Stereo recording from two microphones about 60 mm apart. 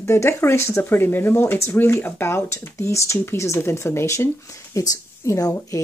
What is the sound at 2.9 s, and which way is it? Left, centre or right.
Speech, left.